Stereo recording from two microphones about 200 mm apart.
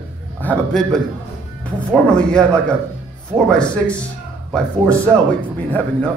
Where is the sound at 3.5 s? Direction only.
5° left (ahead or behind).